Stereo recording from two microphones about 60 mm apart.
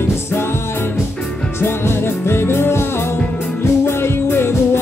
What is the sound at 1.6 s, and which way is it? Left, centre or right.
Music, left.